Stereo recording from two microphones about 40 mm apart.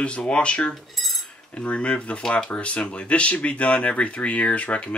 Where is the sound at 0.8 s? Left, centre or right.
Centre.